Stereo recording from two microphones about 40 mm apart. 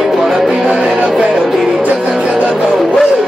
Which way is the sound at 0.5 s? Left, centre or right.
Right.